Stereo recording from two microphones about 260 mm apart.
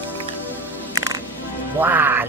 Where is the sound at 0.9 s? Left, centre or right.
Centre.